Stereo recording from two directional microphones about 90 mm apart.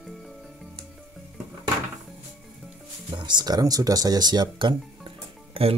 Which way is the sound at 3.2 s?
55° right (ahead or behind).